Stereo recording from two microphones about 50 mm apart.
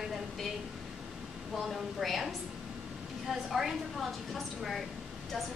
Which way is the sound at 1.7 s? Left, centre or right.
Centre.